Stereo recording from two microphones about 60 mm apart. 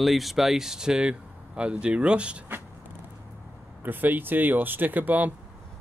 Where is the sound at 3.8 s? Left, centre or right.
Right.